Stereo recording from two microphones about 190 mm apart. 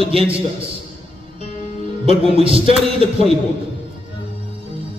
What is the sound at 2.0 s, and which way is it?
Speech, 30° right (ahead or behind).